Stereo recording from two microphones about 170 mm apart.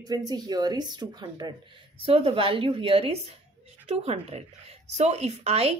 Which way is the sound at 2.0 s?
35° right (ahead or behind).